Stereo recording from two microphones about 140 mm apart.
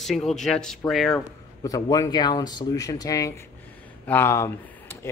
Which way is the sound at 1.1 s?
25° left (ahead or behind).